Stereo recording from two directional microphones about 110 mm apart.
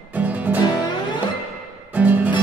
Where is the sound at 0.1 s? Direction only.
15° right (ahead or behind).